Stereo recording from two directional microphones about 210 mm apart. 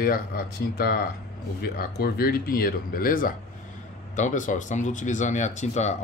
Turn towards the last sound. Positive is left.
turn(degrees=35)  # may be behind; listen again after turning